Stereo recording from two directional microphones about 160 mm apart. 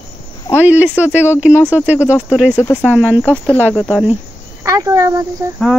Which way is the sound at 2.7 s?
10° left (ahead or behind).